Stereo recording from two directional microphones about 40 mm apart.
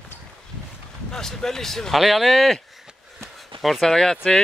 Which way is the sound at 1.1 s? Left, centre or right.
Centre.